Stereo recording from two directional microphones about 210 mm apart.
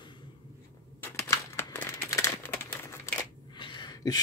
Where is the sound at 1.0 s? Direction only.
10° left (ahead or behind).